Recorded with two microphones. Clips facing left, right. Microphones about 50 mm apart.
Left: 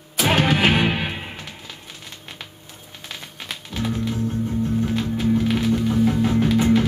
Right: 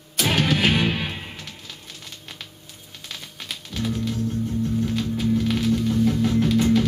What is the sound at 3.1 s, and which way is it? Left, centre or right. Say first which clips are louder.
Music: left 2 dB; centre.